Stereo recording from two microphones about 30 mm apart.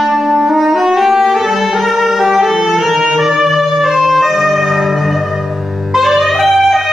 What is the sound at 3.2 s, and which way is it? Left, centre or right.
Music, centre.